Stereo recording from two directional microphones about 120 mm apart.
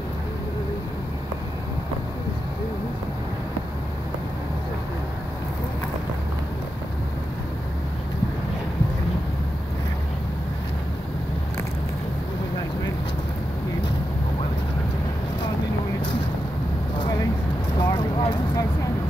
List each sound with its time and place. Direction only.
17.7 s vehicle: 45° left (ahead or behind)